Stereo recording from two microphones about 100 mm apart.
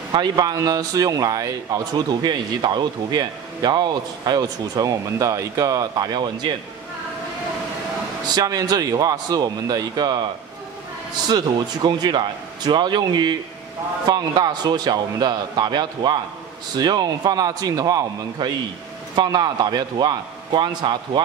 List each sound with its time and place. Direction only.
0.1 s a man's voice: 40° right (ahead or behind)
8.3 s a man's voice: 40° right (ahead or behind)
11.2 s a man's voice: 45° right (ahead or behind)